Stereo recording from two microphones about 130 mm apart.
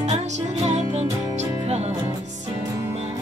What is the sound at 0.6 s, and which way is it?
Music, 60° right (ahead or behind).